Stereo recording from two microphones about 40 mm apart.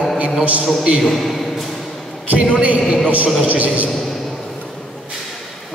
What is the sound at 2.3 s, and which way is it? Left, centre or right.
A man's voice, right.